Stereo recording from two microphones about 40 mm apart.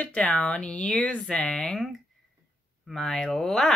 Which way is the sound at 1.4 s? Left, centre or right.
Centre.